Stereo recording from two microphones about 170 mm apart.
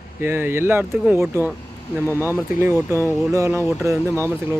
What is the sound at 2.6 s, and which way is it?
Speech, 15° right (ahead or behind).